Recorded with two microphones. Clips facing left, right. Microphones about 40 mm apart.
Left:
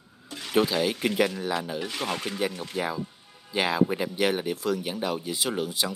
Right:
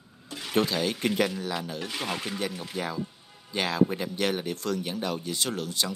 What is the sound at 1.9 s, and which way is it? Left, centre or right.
Speech, centre.